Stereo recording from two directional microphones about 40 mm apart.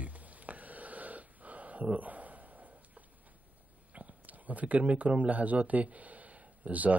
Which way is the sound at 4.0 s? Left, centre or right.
Right.